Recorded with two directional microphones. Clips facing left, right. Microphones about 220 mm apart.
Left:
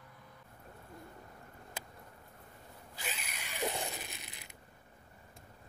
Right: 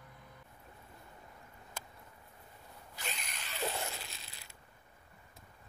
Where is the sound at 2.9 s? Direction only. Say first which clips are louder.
Left 1 dB; 5° left (ahead or behind).